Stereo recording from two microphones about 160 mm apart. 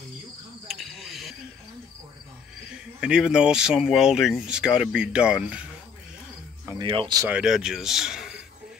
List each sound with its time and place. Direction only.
0.7 s cricket: centre (ahead or behind)
2.7 s speech: 5° right (ahead or behind)
6.8 s speech: 30° right (ahead or behind)
7.2 s speech: 5° right (ahead or behind)